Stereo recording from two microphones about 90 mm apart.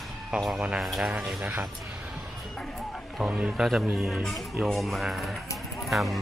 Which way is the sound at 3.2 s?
10° right (ahead or behind).